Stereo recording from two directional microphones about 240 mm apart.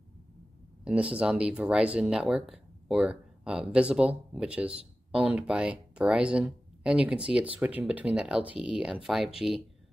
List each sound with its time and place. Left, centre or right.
0.8 s speech: centre